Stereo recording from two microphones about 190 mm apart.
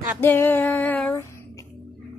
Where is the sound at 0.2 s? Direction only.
10° left (ahead or behind).